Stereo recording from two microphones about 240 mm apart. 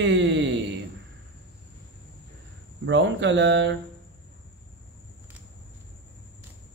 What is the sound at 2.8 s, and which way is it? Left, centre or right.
Speech, right.